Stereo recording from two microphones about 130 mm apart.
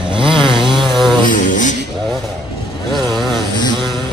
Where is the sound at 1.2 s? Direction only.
85° left.